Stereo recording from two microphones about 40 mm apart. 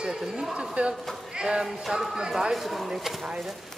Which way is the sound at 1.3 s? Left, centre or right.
Centre.